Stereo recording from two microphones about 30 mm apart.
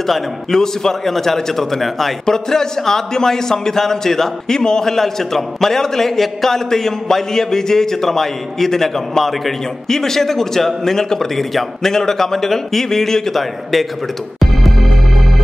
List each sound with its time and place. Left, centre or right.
0.5 s a man's voice: centre
2.2 s a man's voice: centre
4.6 s a man's voice: left
4.8 s a man's voice: centre
14.4 s music: centre